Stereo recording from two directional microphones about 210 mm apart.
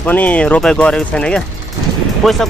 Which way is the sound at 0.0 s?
10° left (ahead or behind).